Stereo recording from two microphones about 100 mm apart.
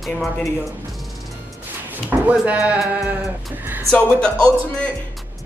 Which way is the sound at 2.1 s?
15° right (ahead or behind).